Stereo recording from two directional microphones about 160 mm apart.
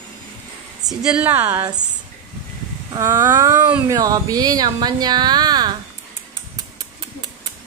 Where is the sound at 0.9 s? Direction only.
5° right (ahead or behind).